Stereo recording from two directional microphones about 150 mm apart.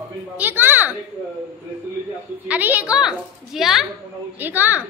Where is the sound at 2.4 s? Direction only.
10° right (ahead or behind).